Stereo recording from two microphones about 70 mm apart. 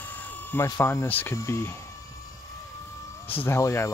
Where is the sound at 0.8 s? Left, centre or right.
Left.